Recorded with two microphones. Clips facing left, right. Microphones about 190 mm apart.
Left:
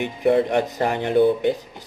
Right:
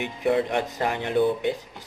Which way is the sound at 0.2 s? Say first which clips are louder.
Left 5 dB; 45° left (ahead or behind).